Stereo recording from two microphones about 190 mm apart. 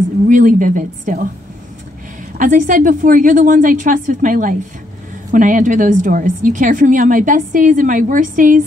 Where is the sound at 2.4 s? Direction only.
45° right (ahead or behind).